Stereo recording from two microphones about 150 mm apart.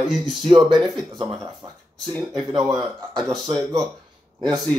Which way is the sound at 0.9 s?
30° right (ahead or behind).